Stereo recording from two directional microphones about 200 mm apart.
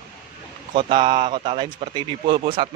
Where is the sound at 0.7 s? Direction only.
25° right (ahead or behind).